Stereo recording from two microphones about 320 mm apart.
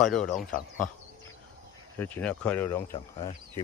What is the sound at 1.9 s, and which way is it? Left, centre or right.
Speech, centre.